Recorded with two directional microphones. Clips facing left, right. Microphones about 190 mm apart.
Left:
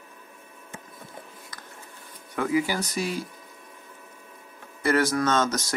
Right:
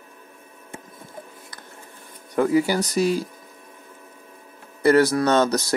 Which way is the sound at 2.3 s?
40° right (ahead or behind).